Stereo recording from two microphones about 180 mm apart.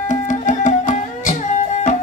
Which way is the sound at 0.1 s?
45° left (ahead or behind).